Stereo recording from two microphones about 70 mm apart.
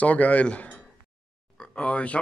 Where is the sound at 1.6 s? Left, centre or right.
Centre.